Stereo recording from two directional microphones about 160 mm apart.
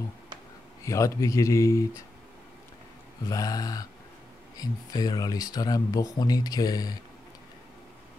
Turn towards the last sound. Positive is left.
turn(degrees=25)  # may be behind; listen again after turning